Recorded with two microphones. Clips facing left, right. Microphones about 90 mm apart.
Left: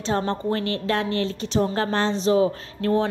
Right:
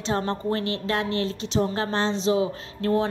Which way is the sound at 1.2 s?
40° left (ahead or behind).